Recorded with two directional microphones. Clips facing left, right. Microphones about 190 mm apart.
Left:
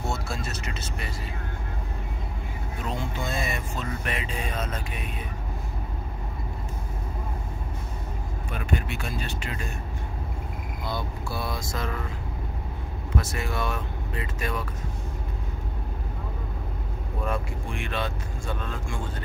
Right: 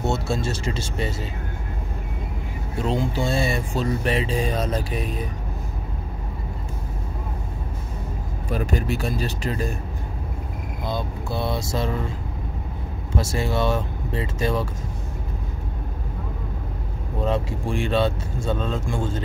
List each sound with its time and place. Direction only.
0.0 s speech: 25° right (ahead or behind)
2.8 s speech: 30° right (ahead or behind)
8.5 s speech: 35° right (ahead or behind)
10.9 s speech: 20° right (ahead or behind)
13.1 s speech: 25° right (ahead or behind)
17.2 s speech: 25° right (ahead or behind)